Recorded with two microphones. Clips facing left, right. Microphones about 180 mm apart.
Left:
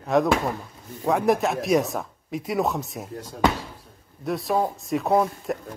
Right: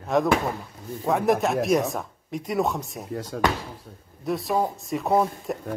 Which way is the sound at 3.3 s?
90° right.